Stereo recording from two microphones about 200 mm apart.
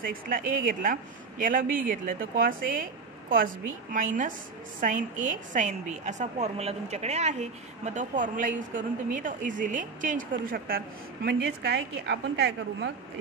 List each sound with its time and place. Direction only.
0.0 s a woman's voice: 45° right (ahead or behind)
11.2 s a woman's voice: 55° right (ahead or behind)